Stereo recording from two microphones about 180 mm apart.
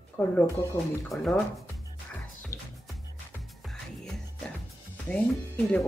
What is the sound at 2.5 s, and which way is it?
Music, 15° left (ahead or behind).